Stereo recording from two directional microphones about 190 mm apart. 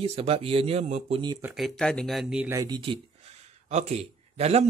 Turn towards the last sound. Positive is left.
turn(degrees=-35)  # may be behind; listen again after turning